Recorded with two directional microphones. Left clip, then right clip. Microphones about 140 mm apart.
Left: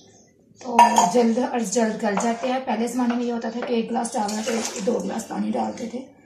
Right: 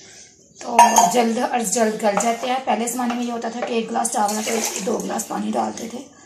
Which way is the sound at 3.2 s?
25° right (ahead or behind).